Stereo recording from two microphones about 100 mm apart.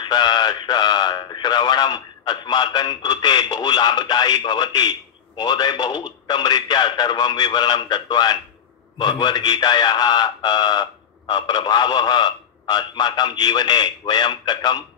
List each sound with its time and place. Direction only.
0.0 s a man's voice: 50° left (ahead or behind)